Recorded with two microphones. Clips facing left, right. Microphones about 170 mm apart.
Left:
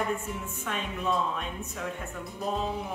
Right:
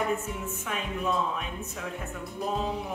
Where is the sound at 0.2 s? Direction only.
Centre (ahead or behind).